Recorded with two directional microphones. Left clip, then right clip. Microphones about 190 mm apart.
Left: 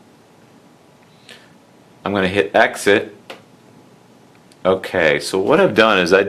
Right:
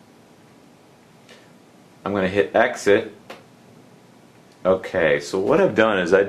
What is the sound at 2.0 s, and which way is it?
Speech, 20° left (ahead or behind).